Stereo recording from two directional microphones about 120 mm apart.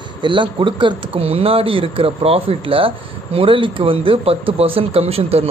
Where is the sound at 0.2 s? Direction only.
45° right (ahead or behind).